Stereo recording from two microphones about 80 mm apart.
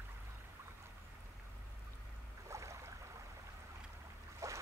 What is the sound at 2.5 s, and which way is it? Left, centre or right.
Boat, right.